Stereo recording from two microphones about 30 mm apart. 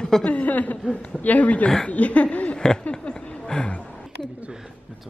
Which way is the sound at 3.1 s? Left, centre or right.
Left.